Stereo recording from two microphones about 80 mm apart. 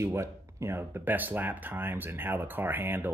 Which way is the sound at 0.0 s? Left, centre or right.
Right.